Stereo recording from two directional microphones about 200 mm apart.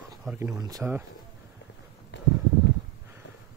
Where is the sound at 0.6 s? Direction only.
20° right (ahead or behind).